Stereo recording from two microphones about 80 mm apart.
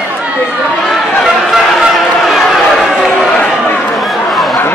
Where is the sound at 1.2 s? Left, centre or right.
Centre.